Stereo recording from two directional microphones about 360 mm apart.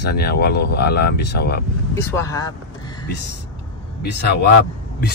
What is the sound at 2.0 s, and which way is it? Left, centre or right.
Speech, centre.